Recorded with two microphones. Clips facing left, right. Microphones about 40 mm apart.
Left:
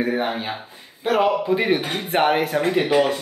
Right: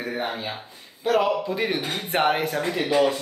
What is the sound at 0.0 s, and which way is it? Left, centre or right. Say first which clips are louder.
Speech: left 6 dB; left.